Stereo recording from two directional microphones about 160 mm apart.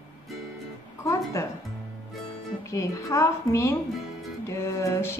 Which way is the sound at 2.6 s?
20° left (ahead or behind).